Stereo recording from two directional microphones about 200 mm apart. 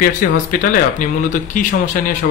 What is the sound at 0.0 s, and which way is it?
Speech, 40° left (ahead or behind).